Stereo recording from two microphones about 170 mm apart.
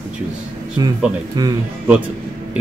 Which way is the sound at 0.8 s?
25° right (ahead or behind).